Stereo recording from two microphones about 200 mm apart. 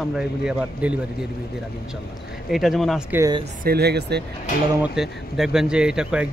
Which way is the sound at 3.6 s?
55° right (ahead or behind).